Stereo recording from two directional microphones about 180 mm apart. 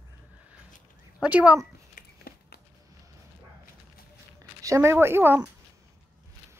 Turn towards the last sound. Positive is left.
turn(degrees=-10)  # may be behind; listen again after turning